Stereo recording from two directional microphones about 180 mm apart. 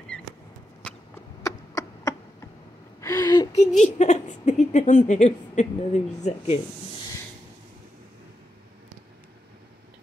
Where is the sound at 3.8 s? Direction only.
40° left (ahead or behind).